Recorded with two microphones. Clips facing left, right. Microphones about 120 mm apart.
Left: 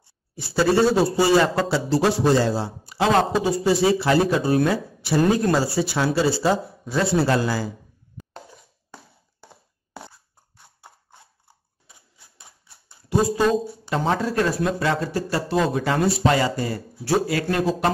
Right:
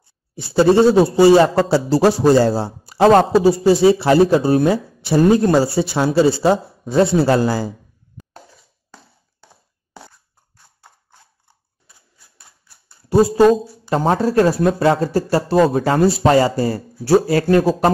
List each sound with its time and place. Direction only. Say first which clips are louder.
0.4 s a man's voice: right 6 dB; 25° right (ahead or behind)
13.1 s a man's voice: right 7 dB; 40° right (ahead or behind)